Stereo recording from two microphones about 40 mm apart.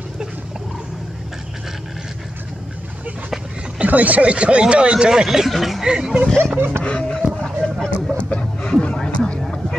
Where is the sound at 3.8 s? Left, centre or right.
Right.